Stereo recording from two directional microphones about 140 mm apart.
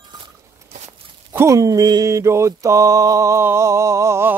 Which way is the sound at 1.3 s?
20° right (ahead or behind).